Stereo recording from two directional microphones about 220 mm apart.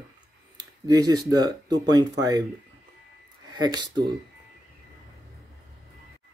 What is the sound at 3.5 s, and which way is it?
Speech, 20° right (ahead or behind).